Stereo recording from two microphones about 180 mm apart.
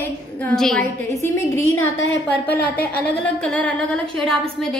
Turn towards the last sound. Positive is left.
turn(degrees=5)  # may be behind; listen again after turning